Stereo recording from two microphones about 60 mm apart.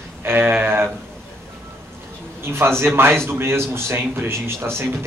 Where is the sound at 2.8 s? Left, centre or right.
Right.